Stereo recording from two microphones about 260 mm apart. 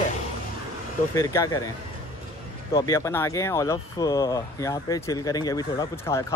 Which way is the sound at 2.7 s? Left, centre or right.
Centre.